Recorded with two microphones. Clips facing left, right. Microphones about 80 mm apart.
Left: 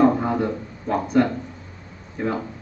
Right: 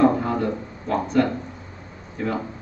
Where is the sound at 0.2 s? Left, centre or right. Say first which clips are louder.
Left 1 dB; centre.